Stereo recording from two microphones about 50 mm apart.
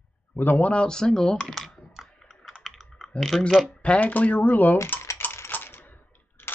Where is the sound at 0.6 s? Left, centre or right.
Centre.